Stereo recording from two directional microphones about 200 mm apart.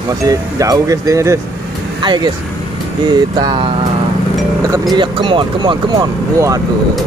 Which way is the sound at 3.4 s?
20° right (ahead or behind).